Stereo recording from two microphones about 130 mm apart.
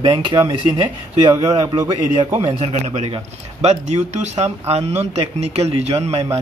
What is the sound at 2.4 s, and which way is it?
A man's voice, 50° right (ahead or behind).